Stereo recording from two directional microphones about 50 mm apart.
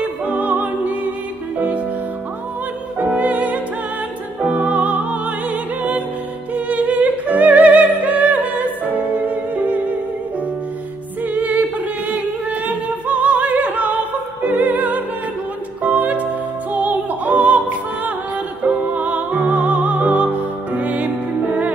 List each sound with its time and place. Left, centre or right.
0.2 s music: right
3.1 s music: right
11.3 s singing: right
14.4 s opera: right
15.8 s music: right
18.6 s music: right